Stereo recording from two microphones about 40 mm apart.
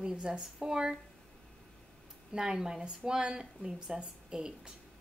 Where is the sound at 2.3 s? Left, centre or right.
Centre.